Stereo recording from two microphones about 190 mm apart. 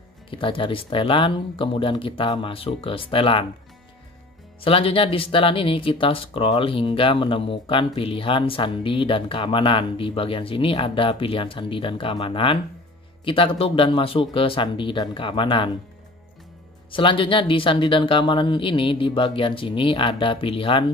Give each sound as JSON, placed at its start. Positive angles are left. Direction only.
{"t": 0.3, "sound": "speech", "side_deg": 25}
{"t": 4.6, "sound": "speech", "side_deg": 30}
{"t": 16.9, "sound": "speech", "side_deg": 25}